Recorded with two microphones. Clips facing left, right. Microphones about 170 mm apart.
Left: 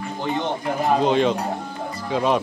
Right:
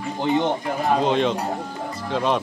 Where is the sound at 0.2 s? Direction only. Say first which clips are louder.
Right 5 dB; 15° right (ahead or behind).